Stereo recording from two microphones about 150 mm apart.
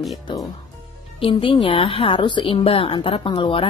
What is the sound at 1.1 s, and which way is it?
Speech, 35° left (ahead or behind).